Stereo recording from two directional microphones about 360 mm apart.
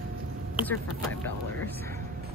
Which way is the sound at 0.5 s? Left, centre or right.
Centre.